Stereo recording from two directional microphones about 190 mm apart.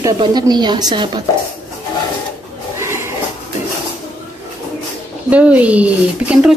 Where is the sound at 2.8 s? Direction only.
15° right (ahead or behind).